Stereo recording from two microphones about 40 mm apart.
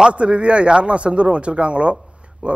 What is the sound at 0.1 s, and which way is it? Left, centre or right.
Speech, right.